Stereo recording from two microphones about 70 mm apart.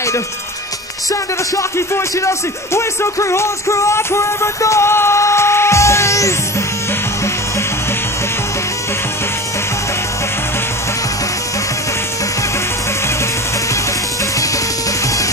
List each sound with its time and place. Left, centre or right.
1.8 s speech: left